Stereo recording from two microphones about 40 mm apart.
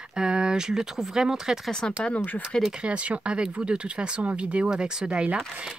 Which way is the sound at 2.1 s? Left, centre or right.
Left.